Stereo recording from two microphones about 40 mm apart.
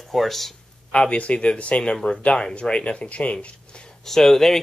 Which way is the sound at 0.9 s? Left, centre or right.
Left.